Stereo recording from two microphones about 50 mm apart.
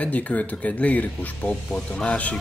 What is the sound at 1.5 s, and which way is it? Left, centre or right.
Speech, left.